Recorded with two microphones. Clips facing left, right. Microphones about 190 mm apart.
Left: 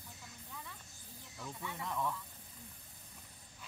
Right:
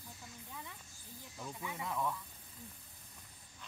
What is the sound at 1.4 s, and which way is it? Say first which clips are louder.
Speech: right 1 dB; 10° right (ahead or behind).